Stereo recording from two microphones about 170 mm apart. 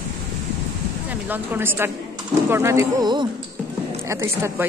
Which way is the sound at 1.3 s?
10° right (ahead or behind).